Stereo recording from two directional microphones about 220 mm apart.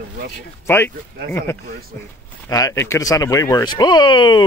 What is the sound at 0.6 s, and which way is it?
Speech, 10° left (ahead or behind).